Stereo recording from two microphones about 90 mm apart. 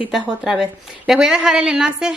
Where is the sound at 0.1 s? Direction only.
5° right (ahead or behind).